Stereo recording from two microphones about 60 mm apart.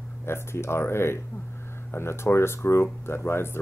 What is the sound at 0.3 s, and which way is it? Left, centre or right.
Speech, left.